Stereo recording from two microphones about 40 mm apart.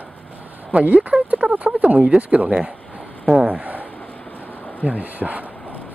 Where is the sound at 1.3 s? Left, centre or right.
Right.